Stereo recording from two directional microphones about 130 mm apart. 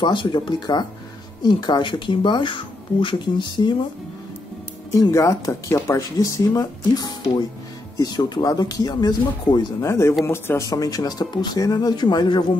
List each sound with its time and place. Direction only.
0.0 s speech: 40° left (ahead or behind)
4.9 s speech: 25° left (ahead or behind)
9.8 s speech: 20° left (ahead or behind)